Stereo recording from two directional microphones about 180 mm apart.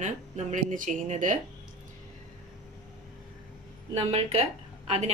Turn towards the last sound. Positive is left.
turn(degrees=-35)  # may be behind; listen again after turning